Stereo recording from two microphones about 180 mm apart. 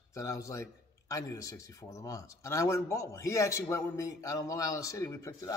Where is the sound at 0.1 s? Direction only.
15° left (ahead or behind).